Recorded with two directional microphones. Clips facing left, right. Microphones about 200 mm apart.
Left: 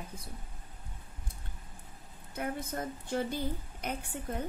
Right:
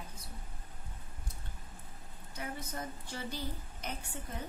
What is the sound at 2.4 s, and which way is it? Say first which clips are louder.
A woman's voice: left 6 dB; 55° left (ahead or behind).